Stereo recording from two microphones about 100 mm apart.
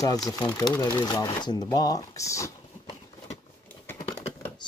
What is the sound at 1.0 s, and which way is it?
Speech, 45° left (ahead or behind).